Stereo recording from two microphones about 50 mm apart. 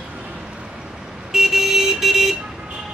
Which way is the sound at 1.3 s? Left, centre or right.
Centre.